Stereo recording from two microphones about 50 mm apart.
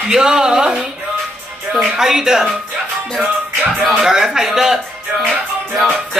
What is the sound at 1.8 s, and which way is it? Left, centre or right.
Speech, centre.